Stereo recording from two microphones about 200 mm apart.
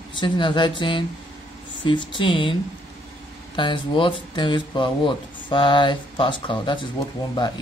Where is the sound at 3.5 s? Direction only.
25° left (ahead or behind).